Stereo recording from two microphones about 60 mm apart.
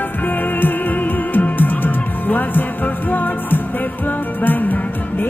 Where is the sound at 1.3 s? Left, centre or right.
Left.